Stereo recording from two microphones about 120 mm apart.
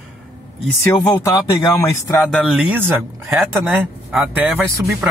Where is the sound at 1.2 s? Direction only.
25° left (ahead or behind).